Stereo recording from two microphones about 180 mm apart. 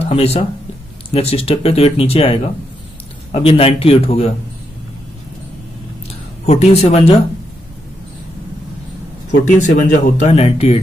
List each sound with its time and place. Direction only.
0.0 s speech: 35° left (ahead or behind)
3.4 s speech: 30° left (ahead or behind)
6.4 s speech: 35° left (ahead or behind)
9.4 s speech: 40° left (ahead or behind)